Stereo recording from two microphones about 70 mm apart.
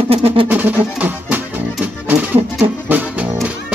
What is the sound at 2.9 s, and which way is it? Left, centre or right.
Music, right.